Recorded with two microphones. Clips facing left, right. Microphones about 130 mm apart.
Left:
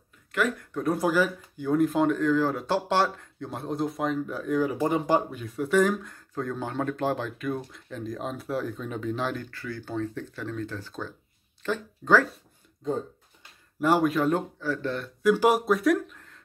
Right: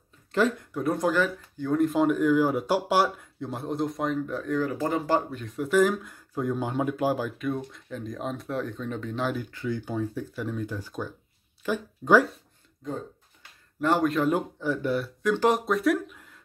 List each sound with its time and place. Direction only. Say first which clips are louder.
0.3 s speech: right 3 dB; 30° right (ahead or behind)
0.7 s speech: left 1 dB; centre (ahead or behind)
5.6 s speech: even; centre (ahead or behind)
9.5 s speech: right 4 dB; 20° right (ahead or behind)
13.7 s speech: left 1 dB; 10° left (ahead or behind)
14.6 s speech: right 3 dB; 15° right (ahead or behind)
15.2 s speech: left 3 dB; 10° left (ahead or behind); by 16.3 s 10° right (ahead or behind)